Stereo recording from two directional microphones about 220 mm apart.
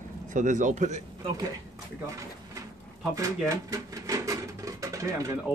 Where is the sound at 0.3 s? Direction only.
35° right (ahead or behind).